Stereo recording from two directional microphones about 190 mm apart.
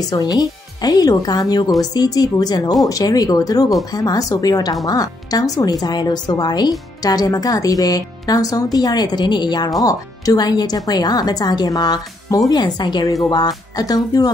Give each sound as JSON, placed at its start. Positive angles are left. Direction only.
{"t": 0.4, "sound": "speech", "side_deg": 20}